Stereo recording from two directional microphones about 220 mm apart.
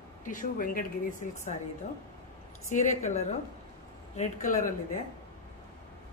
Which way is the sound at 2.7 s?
30° left (ahead or behind).